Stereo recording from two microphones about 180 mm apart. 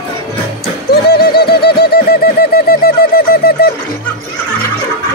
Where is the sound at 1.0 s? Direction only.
60° left (ahead or behind).